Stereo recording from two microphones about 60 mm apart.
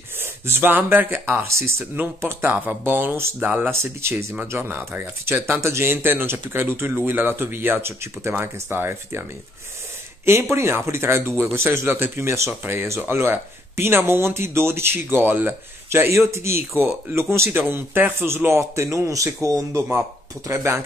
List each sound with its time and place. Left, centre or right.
0.2 s speech: right
5.6 s speech: right
10.2 s speech: right
15.9 s a man's voice: right
20.5 s speech: right